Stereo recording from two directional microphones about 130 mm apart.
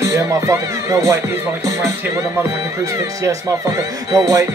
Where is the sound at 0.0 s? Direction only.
25° right (ahead or behind).